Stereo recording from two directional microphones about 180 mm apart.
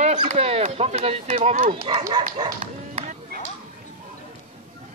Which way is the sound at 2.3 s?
30° right (ahead or behind).